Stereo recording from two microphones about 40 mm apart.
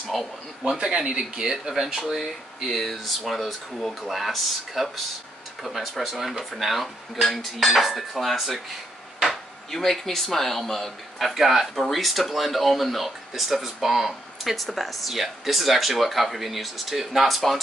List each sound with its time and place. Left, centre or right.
0.1 s speech: centre
0.7 s speech: centre
1.7 s speech: centre
2.1 s speech: centre